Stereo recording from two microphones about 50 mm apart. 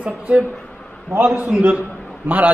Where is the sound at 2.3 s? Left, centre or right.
Right.